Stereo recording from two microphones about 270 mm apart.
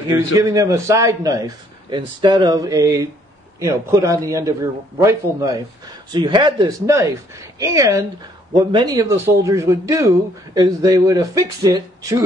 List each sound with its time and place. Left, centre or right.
0.4 s a man's voice: centre